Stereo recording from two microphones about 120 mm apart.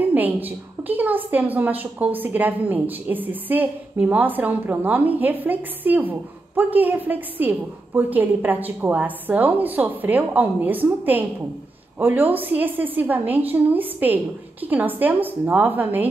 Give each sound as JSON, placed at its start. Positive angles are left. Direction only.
{"t": 0.0, "sound": "a woman's voice", "side_deg": -15}